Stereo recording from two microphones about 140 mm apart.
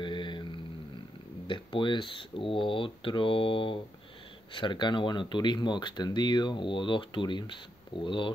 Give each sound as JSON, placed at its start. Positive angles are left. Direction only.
{"t": 0.0, "sound": "mantra", "side_deg": 35}
{"t": 1.5, "sound": "speech", "side_deg": 35}